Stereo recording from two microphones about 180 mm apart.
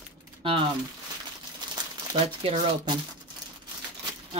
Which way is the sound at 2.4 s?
30° right (ahead or behind).